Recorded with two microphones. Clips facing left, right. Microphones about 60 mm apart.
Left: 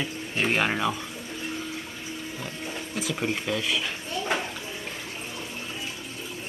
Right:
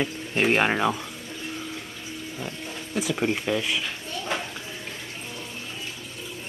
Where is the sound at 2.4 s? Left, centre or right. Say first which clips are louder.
Even; centre.